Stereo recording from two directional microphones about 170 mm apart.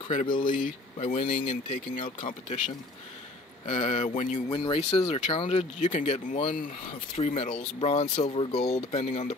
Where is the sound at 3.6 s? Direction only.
45° left (ahead or behind).